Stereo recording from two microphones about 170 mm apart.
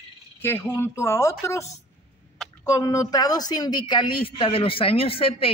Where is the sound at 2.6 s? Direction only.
20° left (ahead or behind).